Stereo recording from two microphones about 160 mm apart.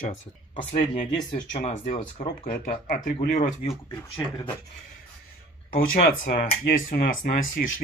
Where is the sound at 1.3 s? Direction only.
50° left (ahead or behind).